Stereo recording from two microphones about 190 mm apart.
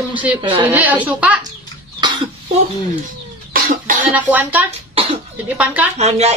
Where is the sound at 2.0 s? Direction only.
25° right (ahead or behind).